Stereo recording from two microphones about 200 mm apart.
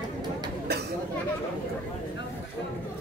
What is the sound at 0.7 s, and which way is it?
Chatter, 55° right (ahead or behind).